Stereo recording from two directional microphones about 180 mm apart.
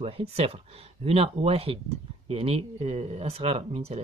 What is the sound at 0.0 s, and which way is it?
Speech, 35° right (ahead or behind).